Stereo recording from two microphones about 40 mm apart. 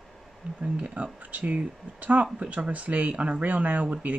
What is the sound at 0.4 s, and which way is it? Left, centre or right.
Speech, right.